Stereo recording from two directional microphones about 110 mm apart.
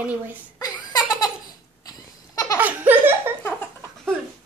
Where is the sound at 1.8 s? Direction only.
30° left (ahead or behind).